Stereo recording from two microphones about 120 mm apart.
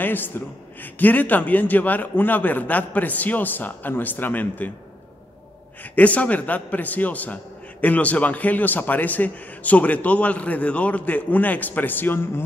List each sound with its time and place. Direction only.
0.0 s a sound: 15° left (ahead or behind)
0.7 s a man's voice: 15° left (ahead or behind)
5.9 s a man's voice: 10° left (ahead or behind)